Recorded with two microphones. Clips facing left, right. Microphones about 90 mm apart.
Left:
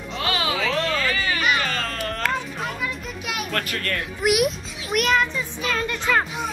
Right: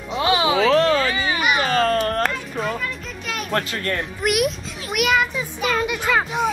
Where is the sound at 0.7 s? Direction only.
35° right (ahead or behind).